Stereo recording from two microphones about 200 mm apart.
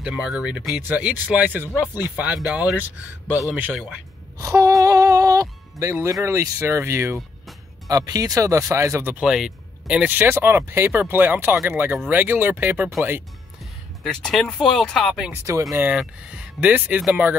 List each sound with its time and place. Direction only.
0.0 s speech: 5° right (ahead or behind)
4.4 s music: 15° right (ahead or behind)
6.2 s speech: 15° right (ahead or behind)
14.0 s speech: 5° left (ahead or behind)